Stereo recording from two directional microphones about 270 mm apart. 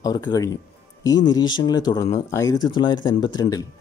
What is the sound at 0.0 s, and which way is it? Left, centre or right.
Speech, centre.